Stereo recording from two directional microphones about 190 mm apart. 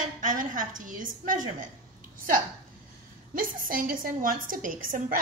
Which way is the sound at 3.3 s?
45° right (ahead or behind).